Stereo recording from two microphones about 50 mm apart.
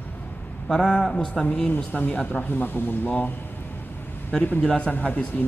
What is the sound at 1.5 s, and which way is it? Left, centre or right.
Speech, left.